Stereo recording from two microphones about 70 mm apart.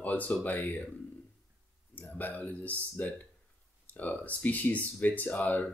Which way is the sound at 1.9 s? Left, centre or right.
Left.